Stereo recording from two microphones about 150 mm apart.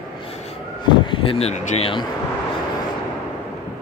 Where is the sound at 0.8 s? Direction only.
30° left (ahead or behind).